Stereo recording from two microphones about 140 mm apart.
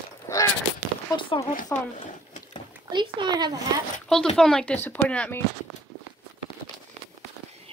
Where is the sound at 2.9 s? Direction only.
35° right (ahead or behind).